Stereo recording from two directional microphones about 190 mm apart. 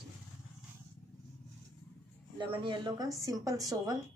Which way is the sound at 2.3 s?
25° right (ahead or behind).